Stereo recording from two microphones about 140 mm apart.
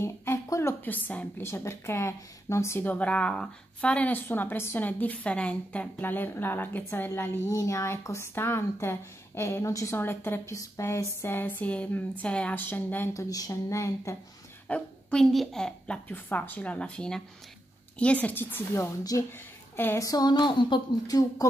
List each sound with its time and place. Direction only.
0.0 s a sound: 20° left (ahead or behind)
1.5 s speech: 20° left (ahead or behind)
14.7 s speech: 5° left (ahead or behind); by 21.5 s 25° left (ahead or behind)